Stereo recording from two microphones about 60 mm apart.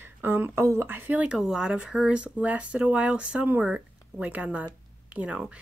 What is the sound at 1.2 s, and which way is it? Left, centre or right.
Speech, centre.